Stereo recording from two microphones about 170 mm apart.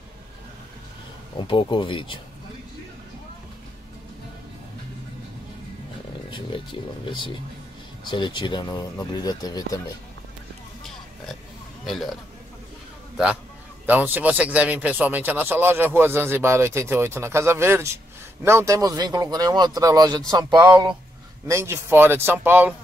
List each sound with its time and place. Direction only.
1.5 s speech: 30° left (ahead or behind)
6.3 s speech: 30° left (ahead or behind)
11.8 s a man's voice: centre (ahead or behind)
13.8 s speech: 10° right (ahead or behind)